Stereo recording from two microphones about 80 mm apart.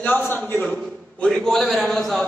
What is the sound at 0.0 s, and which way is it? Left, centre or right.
Speech, left.